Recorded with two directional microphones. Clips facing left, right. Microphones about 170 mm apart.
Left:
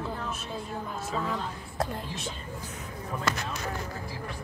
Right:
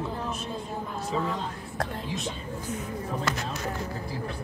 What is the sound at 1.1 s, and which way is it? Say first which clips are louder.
Speech: right 3 dB; 15° right (ahead or behind).